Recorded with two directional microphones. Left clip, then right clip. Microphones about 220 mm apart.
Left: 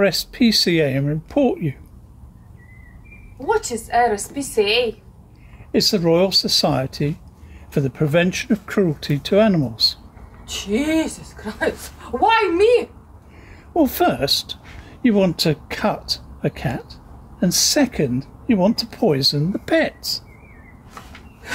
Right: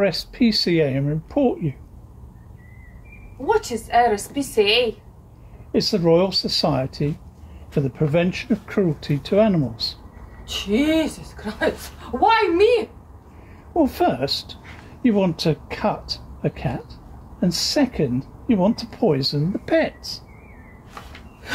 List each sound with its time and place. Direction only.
0.0 s speech: 30° left (ahead or behind)
3.4 s a woman's voice: centre (ahead or behind)
5.7 s speech: 35° left (ahead or behind)
10.4 s a woman's voice: centre (ahead or behind)
13.7 s speech: 30° left (ahead or behind)
20.9 s snort: centre (ahead or behind)